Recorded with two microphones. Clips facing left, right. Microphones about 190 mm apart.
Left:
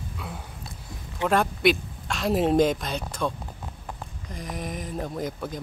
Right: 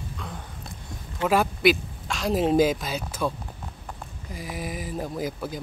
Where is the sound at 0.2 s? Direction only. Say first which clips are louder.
Left 1 dB; 5° left (ahead or behind).